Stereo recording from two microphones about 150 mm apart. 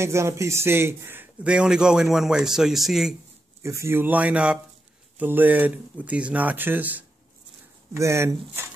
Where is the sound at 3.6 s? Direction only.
20° right (ahead or behind).